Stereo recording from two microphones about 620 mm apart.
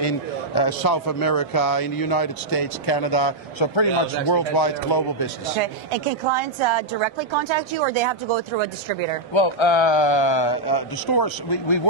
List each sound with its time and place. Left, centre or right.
0.6 s a man's voice: left
5.6 s a woman's voice: right
9.3 s a man's voice: left